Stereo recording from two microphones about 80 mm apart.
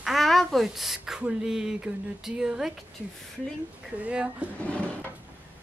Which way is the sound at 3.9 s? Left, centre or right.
Centre.